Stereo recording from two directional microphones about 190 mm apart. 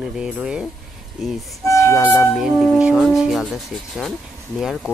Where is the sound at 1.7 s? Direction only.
15° left (ahead or behind).